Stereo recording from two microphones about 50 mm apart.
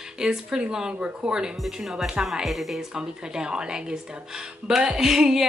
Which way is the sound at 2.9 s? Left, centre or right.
Centre.